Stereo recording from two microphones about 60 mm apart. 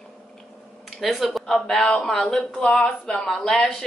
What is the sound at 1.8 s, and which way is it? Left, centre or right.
A woman's voice, left.